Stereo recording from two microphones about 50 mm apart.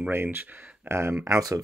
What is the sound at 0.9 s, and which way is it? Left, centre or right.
Speech, right.